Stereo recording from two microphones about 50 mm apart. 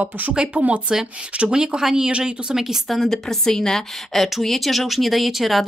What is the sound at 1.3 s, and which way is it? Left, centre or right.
Speech, centre.